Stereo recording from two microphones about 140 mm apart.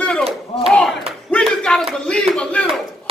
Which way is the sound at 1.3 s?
5° left (ahead or behind).